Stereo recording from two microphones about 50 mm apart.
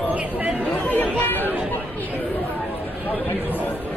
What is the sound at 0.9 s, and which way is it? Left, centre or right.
Chatter, left.